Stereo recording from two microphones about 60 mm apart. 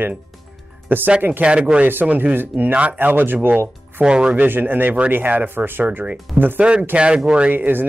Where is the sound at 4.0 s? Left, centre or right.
Centre.